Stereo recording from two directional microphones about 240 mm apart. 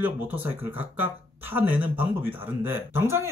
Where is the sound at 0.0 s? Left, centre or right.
Centre.